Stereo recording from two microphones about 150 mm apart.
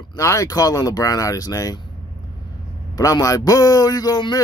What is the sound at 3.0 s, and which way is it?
Speech, 25° left (ahead or behind).